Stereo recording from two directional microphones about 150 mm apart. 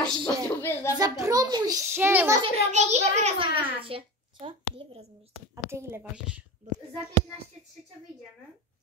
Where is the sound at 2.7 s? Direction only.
50° right (ahead or behind).